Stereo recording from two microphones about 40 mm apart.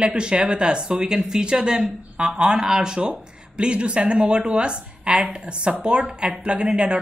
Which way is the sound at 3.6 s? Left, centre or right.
Right.